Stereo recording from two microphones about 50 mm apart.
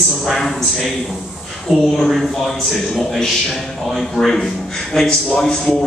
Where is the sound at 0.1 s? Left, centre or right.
Centre.